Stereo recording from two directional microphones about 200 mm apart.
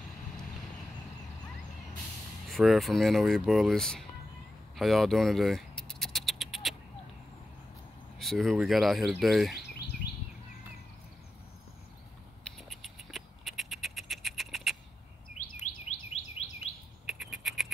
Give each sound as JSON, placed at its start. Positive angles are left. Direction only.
{"t": 2.4, "sound": "speech", "side_deg": 0}
{"t": 4.7, "sound": "a sound", "side_deg": 0}
{"t": 8.2, "sound": "speech", "side_deg": 0}
{"t": 12.5, "sound": "rodents", "side_deg": 0}
{"t": 16.1, "sound": "chirp tone", "side_deg": 30}
{"t": 17.0, "sound": "a sound", "side_deg": 0}